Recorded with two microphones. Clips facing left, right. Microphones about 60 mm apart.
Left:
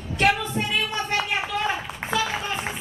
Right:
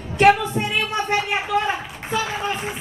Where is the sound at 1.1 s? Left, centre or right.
Right.